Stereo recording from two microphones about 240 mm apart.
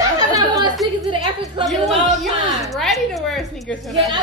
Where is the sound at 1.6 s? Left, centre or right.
Centre.